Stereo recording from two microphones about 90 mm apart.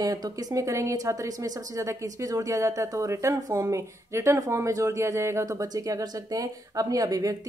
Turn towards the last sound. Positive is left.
turn(degrees=-40)  # may be behind; listen again after turning